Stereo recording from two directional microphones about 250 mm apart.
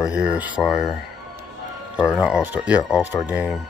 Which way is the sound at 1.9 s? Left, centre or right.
Centre.